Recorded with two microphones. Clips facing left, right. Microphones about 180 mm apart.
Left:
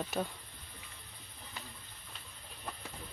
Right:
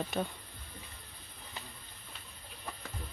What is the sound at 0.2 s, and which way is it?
Speech, 5° left (ahead or behind).